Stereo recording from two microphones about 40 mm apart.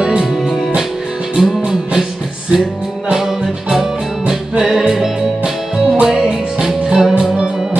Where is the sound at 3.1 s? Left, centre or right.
Centre.